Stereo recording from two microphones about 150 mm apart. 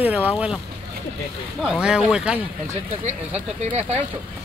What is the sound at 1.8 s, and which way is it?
Speech, 5° right (ahead or behind).